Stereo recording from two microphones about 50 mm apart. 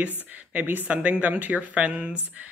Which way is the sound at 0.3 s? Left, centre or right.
Right.